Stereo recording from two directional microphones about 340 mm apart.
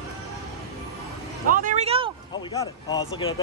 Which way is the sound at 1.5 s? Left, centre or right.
Right.